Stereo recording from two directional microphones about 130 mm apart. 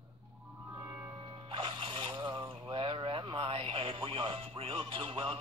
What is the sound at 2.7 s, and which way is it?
Music, 45° right (ahead or behind).